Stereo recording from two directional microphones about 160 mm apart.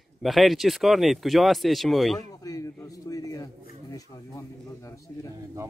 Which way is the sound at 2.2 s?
20° left (ahead or behind).